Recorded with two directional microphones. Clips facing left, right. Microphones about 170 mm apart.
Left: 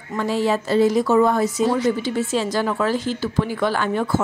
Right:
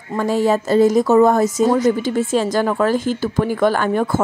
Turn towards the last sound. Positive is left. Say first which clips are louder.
# right 3 dB
turn(degrees=-50)  # may be behind; listen again after turning